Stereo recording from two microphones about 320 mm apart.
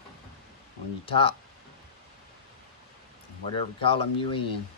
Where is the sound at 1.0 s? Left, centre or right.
Centre.